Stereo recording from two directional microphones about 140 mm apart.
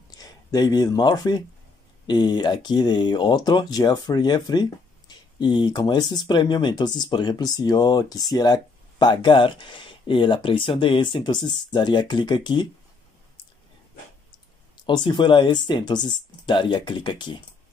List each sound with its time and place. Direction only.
0.1 s speech: 25° left (ahead or behind)
14.9 s speech: 35° left (ahead or behind)